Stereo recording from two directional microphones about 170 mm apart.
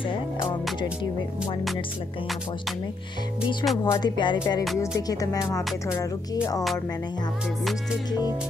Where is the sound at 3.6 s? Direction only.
25° left (ahead or behind).